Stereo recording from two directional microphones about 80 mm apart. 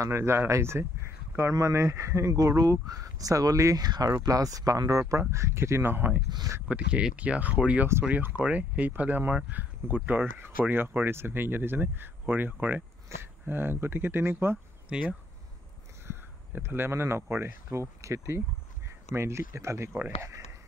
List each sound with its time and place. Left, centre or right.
0.0 s speech: right
3.7 s speech: right
6.7 s speech: centre; by 14.6 s right
14.9 s speech: centre
16.1 s speech: right